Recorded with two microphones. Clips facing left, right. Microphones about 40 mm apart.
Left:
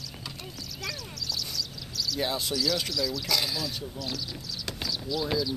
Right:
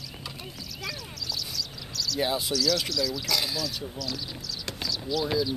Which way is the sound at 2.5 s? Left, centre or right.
Centre.